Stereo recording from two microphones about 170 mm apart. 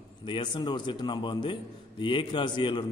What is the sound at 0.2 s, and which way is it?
A man's voice, 30° left (ahead or behind).